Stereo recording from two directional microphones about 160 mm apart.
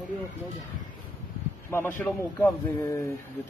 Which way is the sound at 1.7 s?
15° left (ahead or behind).